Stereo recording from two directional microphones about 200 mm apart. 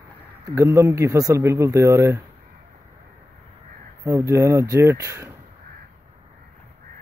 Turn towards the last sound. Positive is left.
turn(degrees=-15)  # may be behind; listen again after turning